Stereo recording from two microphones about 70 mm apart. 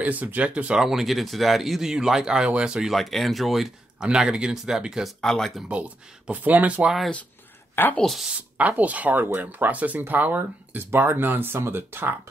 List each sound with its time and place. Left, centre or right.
0.0 s speech: right
0.8 s speech: centre
2.9 s speech: centre
4.0 s speech: centre
5.2 s speech: centre
5.7 s speech: centre
8.0 s speech: centre
8.3 s speech: right